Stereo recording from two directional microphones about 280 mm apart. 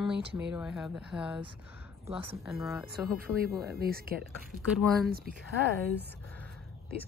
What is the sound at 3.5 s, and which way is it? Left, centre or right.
Speech, right.